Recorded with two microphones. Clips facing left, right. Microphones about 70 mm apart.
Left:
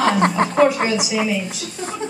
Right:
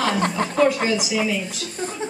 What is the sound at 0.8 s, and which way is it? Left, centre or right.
Speech, centre.